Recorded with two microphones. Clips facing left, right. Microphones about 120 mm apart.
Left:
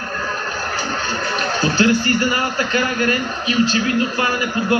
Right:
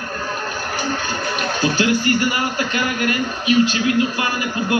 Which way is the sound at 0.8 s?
35° left (ahead or behind).